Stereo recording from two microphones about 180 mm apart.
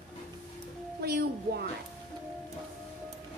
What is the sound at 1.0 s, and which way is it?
Speech, 60° right (ahead or behind).